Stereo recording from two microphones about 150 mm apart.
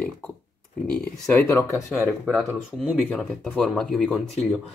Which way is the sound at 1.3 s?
15° left (ahead or behind).